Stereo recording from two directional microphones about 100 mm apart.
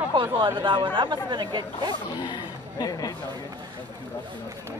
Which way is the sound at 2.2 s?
50° left (ahead or behind).